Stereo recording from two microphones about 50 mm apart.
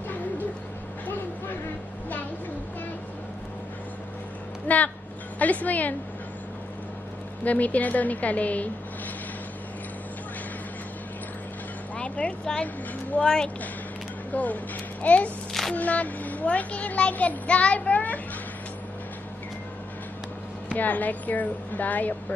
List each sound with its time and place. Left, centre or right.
4.6 s a child's voice: left
7.4 s a woman's voice: left
11.9 s vehicle: left
13.1 s a child's voice: left
14.3 s a child's voice: left
20.7 s a child's voice: left